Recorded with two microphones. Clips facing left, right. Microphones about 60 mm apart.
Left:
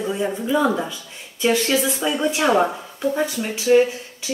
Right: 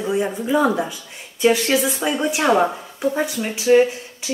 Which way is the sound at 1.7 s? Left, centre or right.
Right.